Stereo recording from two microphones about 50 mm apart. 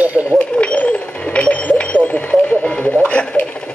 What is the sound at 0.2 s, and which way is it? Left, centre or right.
Speech, centre.